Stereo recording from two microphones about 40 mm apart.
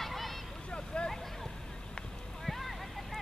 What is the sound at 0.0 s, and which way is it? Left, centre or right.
Vehicle, centre.